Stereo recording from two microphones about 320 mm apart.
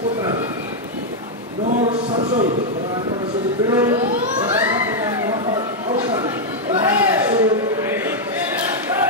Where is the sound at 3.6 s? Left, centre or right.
Centre.